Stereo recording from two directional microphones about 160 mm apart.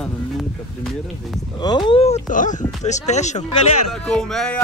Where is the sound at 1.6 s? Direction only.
30° left (ahead or behind); by 2.6 s 50° left (ahead or behind).